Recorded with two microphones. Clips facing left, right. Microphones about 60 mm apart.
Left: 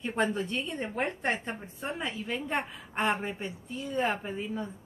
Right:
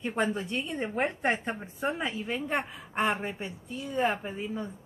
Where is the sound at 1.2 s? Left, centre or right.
Right.